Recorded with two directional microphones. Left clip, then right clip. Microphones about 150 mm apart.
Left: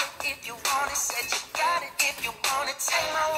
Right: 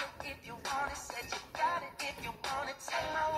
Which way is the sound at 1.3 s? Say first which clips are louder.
Left 7 dB; 15° left (ahead or behind).